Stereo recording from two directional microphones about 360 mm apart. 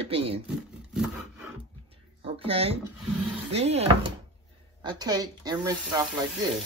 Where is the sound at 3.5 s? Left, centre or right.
Centre.